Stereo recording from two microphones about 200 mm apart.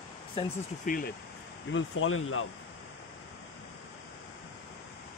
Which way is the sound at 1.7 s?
85° left.